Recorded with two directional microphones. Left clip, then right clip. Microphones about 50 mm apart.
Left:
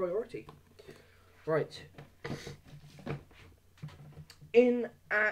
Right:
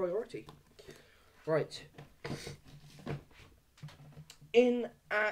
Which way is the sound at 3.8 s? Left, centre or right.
Centre.